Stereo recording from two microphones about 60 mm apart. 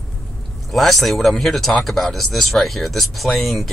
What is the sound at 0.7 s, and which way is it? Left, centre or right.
Speech, centre.